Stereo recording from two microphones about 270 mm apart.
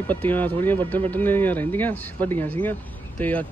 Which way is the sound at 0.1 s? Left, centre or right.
Centre.